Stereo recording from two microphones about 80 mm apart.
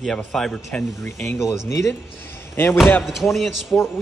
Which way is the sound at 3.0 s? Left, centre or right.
Centre.